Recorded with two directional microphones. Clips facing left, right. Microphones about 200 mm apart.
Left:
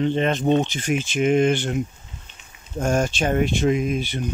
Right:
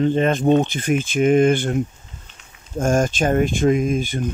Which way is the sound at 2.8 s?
50° right (ahead or behind).